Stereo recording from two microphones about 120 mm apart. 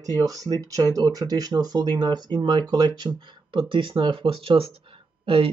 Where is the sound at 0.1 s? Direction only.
30° right (ahead or behind).